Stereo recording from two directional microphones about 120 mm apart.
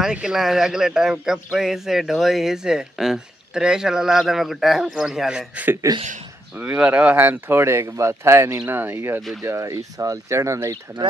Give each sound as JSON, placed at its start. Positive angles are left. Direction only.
{"t": 0.0, "sound": "speech", "side_deg": -5}